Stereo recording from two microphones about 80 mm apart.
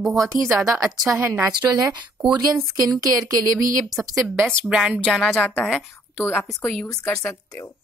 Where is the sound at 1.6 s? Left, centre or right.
Right.